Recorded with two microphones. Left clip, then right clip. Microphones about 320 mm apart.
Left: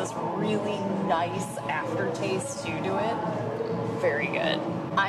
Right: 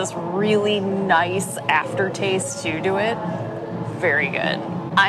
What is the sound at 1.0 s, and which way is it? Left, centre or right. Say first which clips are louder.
Speech: right 9 dB; right.